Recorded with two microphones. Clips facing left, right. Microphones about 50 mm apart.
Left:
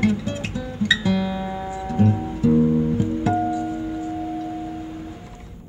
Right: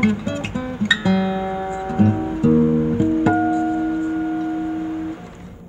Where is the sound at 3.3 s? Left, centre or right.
Right.